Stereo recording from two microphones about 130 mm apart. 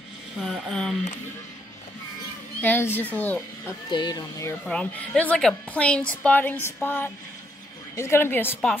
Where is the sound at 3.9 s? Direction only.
35° left (ahead or behind).